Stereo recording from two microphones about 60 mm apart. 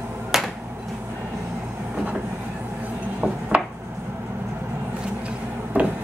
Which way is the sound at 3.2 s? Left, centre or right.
Centre.